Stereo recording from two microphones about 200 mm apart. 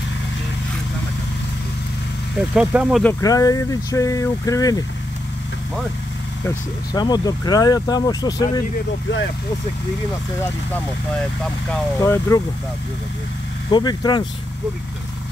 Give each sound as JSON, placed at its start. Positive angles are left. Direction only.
{"t": 2.5, "sound": "speech", "side_deg": -5}
{"t": 3.0, "sound": "speech", "side_deg": 15}
{"t": 6.9, "sound": "speech", "side_deg": 20}
{"t": 12.0, "sound": "speech", "side_deg": 15}
{"t": 13.7, "sound": "speech", "side_deg": 20}